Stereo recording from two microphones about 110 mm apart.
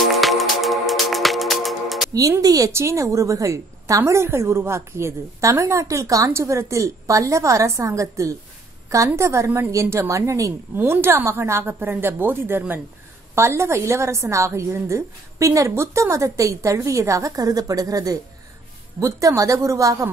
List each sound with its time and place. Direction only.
0.1 s music: centre (ahead or behind)
2.1 s a woman's voice: 35° right (ahead or behind)